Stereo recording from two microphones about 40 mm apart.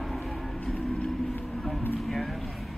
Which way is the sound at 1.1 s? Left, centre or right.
Centre.